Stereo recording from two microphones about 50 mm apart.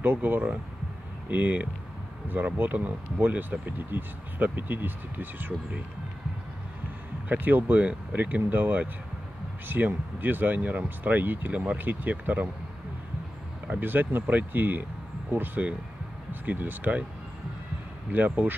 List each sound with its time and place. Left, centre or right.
0.0 s speech: right
7.2 s speech: right
13.7 s speech: right
18.1 s speech: right